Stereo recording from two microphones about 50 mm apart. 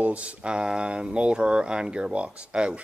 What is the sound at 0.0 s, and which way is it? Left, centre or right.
Speech, right.